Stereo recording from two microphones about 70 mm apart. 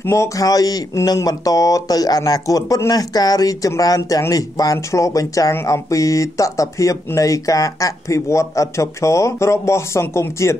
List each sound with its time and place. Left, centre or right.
0.0 s a man's voice: left
0.4 s speech: left
4.7 s speech: left